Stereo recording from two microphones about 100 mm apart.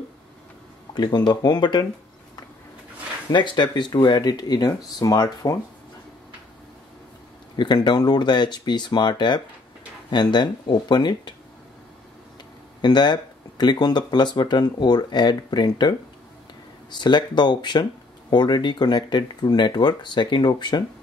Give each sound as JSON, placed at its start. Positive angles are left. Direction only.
{"t": 0.9, "sound": "speech", "side_deg": 45}
{"t": 3.3, "sound": "speech", "side_deg": 50}
{"t": 7.5, "sound": "speech", "side_deg": 50}
{"t": 12.8, "sound": "speech", "side_deg": 45}
{"t": 16.9, "sound": "speech", "side_deg": 50}